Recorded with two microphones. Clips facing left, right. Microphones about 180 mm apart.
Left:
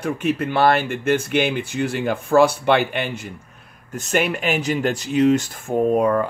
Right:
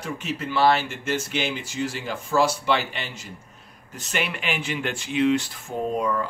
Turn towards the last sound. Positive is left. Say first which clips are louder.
# left 8 dB
turn(degrees=55)  # may be behind; listen again after turning